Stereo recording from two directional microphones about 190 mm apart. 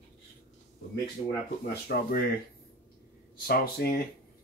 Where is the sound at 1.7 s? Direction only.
50° left (ahead or behind).